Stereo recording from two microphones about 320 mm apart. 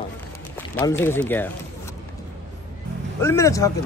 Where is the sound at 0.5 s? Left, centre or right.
Centre.